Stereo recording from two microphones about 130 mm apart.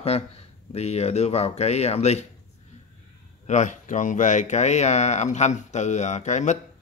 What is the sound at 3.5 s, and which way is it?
Speech, 70° left (ahead or behind).